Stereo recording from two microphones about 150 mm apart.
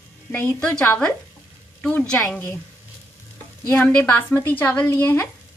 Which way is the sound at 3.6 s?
15° left (ahead or behind).